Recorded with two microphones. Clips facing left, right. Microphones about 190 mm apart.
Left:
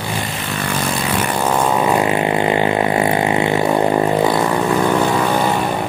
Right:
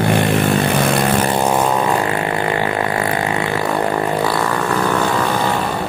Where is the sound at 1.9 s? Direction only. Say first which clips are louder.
Left 2 dB; 20° left (ahead or behind).